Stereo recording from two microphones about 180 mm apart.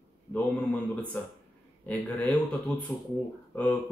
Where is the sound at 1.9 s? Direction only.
10° left (ahead or behind).